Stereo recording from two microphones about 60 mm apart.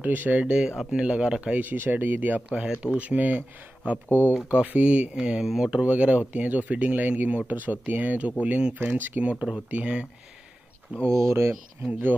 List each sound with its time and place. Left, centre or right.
0.0 s speech: right
1.6 s speech: right
4.1 s speech: left
4.5 s speech: right
8.8 s speech: right
9.2 s speech: right
11.1 s speech: right